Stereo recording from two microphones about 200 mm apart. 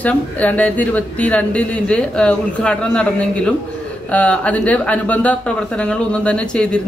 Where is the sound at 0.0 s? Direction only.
5° left (ahead or behind).